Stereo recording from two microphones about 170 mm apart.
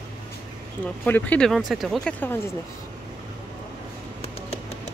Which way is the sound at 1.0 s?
10° left (ahead or behind).